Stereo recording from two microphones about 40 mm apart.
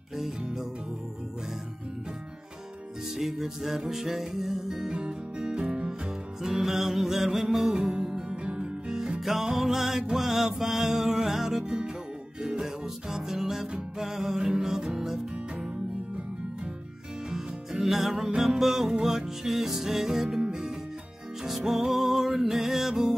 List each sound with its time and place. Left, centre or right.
3.2 s music: centre
4.9 s music: right
6.4 s music: centre
7.9 s music: centre
11.6 s music: centre
17.3 s music: centre
21.5 s music: centre